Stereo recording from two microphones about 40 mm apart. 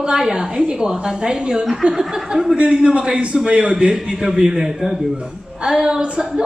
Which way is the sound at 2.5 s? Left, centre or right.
Right.